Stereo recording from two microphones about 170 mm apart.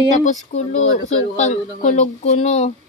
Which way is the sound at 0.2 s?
45° left (ahead or behind).